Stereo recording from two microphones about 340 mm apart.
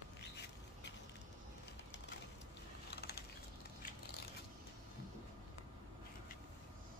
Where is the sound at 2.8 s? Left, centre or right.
Left.